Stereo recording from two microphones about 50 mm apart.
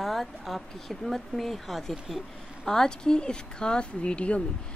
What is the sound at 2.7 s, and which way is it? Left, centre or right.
Speech, centre.